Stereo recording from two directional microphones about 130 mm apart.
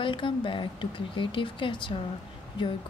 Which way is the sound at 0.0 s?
40° left (ahead or behind).